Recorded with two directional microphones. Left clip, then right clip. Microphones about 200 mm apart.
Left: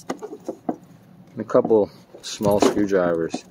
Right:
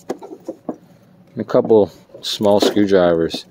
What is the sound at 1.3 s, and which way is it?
Speech, 45° right (ahead or behind).